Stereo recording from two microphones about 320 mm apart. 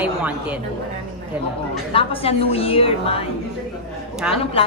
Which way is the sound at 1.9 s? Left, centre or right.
Centre.